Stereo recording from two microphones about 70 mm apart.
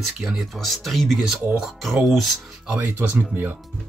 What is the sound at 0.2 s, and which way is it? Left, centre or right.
Speech, centre.